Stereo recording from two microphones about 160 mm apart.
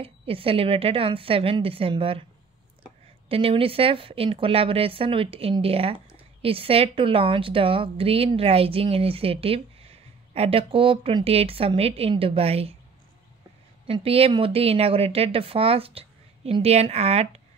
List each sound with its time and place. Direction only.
0.0 s a woman's voice: 35° right (ahead or behind)
3.3 s a woman's voice: 35° right (ahead or behind)
13.8 s a woman's voice: 35° right (ahead or behind)